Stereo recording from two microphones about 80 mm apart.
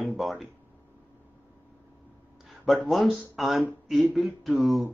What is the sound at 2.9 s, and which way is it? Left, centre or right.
Speech, centre.